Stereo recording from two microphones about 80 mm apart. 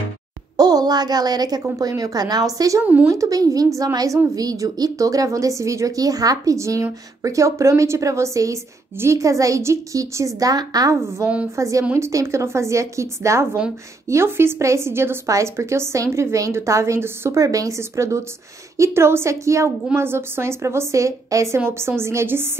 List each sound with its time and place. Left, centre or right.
0.6 s a woman's voice: right
2.8 s speech: centre
3.1 s a woman's voice: right
11.5 s a woman's voice: right